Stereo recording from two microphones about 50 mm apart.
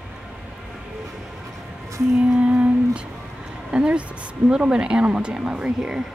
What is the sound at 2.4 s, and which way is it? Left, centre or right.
Humming, right.